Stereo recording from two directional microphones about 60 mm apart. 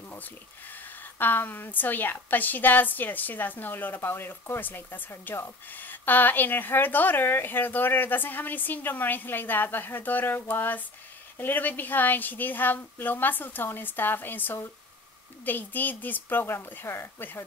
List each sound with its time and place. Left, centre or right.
1.1 s speech: left